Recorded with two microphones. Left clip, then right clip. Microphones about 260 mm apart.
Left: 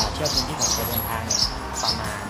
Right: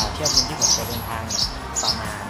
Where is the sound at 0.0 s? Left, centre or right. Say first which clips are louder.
Right 3 dB; centre.